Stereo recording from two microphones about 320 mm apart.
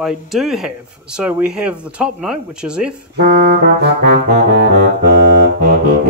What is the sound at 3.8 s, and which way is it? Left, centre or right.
Saxophone, right.